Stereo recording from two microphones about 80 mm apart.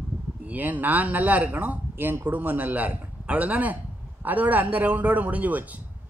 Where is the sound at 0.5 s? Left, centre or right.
Right.